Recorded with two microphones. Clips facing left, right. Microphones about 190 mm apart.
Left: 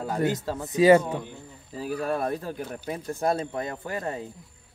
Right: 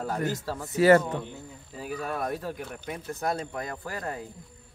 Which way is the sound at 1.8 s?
30° left (ahead or behind).